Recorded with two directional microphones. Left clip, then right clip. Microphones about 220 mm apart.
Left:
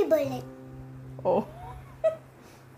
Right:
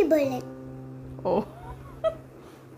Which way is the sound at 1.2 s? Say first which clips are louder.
Even; centre (ahead or behind).